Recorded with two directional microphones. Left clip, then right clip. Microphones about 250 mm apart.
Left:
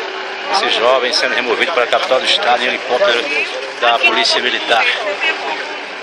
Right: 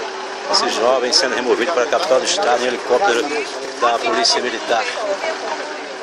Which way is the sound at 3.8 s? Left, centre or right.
Centre.